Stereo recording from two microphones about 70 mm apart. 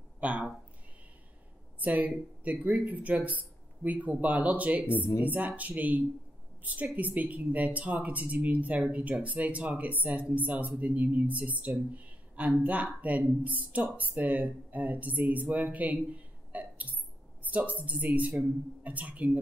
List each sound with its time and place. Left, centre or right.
0.2 s a sound: right
1.8 s speech: right
4.8 s speech: left
5.2 s speech: right
17.4 s music: right
17.7 s speech: right